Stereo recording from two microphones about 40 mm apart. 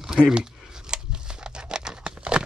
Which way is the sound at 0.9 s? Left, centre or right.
Centre.